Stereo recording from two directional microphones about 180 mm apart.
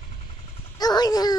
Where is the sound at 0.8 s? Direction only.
20° left (ahead or behind).